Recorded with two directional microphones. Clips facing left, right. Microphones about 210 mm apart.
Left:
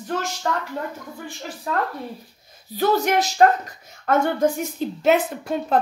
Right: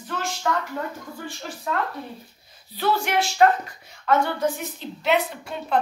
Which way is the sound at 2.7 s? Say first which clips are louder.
Left 4 dB; 45° left (ahead or behind).